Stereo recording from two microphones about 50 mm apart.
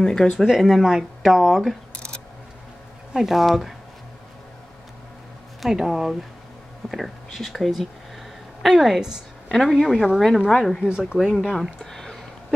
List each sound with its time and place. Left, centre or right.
0.0 s speech: centre
0.5 s speech: centre
3.1 s speech: centre
5.6 s speech: centre
10.8 s speech: centre
11.1 s speech: centre
11.5 s a sound: centre